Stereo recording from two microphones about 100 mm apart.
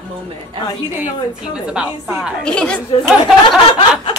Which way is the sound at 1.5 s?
10° right (ahead or behind).